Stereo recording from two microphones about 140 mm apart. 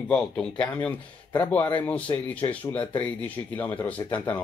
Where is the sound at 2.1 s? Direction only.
25° left (ahead or behind).